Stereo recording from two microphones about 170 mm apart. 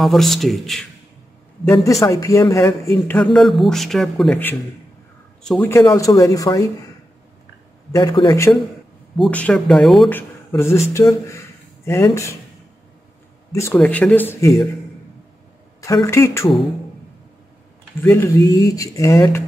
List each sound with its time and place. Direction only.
0.0 s a man's voice: centre (ahead or behind)
1.6 s a man's voice: 15° left (ahead or behind)
5.7 s speech: 15° left (ahead or behind)
7.9 s speech: 25° left (ahead or behind)
9.2 s a man's voice: 5° left (ahead or behind)
13.5 s speech: 15° left (ahead or behind)
15.8 s speech: 20° left (ahead or behind)
18.0 s speech: 15° left (ahead or behind)